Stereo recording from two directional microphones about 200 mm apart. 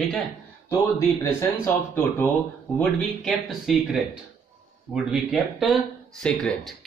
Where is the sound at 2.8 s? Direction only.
Centre (ahead or behind).